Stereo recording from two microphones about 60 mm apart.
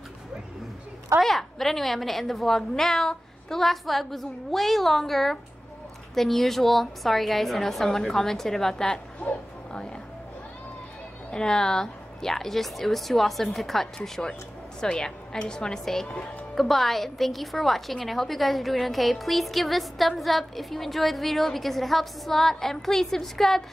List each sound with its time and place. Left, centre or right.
1.2 s a woman's voice: centre
11.2 s a woman's voice: centre